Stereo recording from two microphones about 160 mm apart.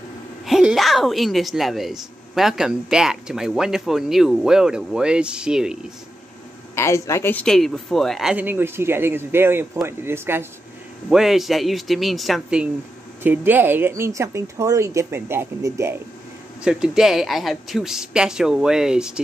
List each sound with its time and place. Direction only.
0.5 s speech: centre (ahead or behind)
6.7 s speech: 15° left (ahead or behind)
7.4 s speech: centre (ahead or behind); by 10.4 s 15° right (ahead or behind)
11.1 s speech: 5° right (ahead or behind)
16.6 s speech: 5° right (ahead or behind)